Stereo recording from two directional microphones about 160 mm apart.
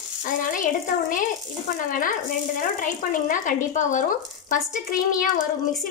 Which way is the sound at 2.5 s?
55° left (ahead or behind).